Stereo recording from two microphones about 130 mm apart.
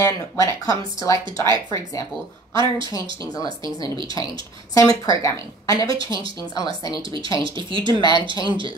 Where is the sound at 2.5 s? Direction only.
35° right (ahead or behind).